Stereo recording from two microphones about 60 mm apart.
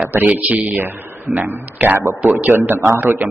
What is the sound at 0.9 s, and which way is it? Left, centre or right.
A man's voice, right.